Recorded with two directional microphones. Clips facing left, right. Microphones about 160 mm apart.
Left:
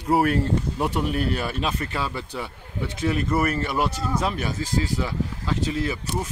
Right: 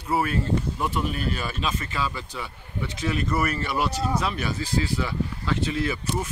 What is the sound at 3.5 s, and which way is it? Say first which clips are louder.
Speech: left 2 dB; 50° left (ahead or behind).